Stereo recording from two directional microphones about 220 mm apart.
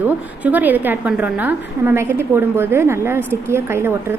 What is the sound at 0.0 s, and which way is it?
A woman's voice, 10° right (ahead or behind).